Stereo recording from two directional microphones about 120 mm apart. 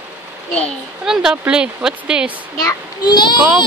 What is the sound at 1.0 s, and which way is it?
Speech, 5° right (ahead or behind).